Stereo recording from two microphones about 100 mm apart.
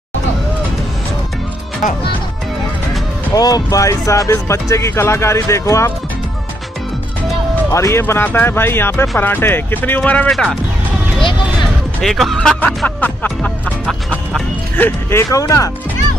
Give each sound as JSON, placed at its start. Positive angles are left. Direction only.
{"t": 3.3, "sound": "speech", "side_deg": 40}
{"t": 7.7, "sound": "speech", "side_deg": 30}
{"t": 10.3, "sound": "speech", "side_deg": 0}
{"t": 12.0, "sound": "speech", "side_deg": 0}
{"t": 12.5, "sound": "music", "side_deg": 15}
{"t": 14.8, "sound": "speech", "side_deg": 25}
{"t": 15.3, "sound": "speech", "side_deg": 35}